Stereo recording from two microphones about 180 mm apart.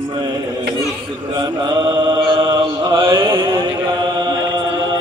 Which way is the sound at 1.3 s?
20° right (ahead or behind).